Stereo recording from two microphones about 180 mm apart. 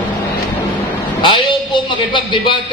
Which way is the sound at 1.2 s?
25° left (ahead or behind).